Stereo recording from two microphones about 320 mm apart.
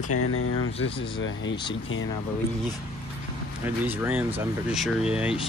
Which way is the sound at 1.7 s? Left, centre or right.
Left.